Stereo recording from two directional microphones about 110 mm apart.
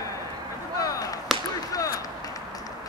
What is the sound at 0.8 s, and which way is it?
Basketball bounce, 35° left (ahead or behind).